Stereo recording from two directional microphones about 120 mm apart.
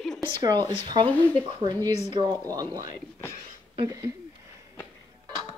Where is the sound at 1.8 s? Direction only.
20° left (ahead or behind).